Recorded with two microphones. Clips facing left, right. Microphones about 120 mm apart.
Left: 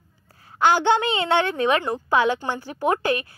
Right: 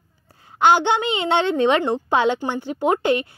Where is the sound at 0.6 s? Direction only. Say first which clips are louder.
Right 2 dB; 20° right (ahead or behind).